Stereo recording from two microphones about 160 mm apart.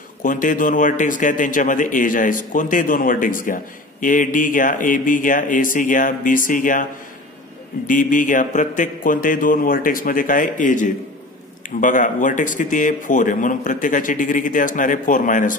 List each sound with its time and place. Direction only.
0.2 s a man's voice: 55° left (ahead or behind)